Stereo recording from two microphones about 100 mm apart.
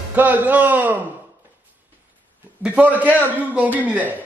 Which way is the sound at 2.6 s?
15° right (ahead or behind).